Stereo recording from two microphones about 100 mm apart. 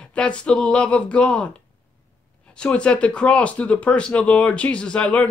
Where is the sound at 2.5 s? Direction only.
10° left (ahead or behind).